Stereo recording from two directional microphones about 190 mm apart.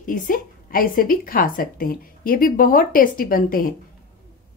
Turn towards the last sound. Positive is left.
turn(degrees=50)  # may be behind; listen again after turning